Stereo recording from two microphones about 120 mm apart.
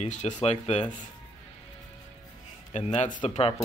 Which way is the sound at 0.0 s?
85° left.